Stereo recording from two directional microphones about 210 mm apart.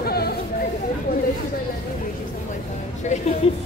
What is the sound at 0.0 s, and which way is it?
Chatter, 50° left (ahead or behind).